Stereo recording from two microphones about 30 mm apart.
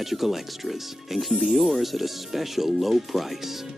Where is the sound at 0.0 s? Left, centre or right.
Centre.